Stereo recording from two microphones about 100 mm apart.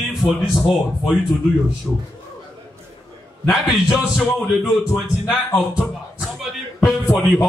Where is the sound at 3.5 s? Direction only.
5° right (ahead or behind).